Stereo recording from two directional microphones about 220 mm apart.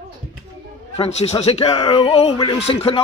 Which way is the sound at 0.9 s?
30° left (ahead or behind).